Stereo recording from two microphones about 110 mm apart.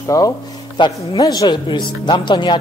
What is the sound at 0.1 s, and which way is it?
Speech, 30° left (ahead or behind).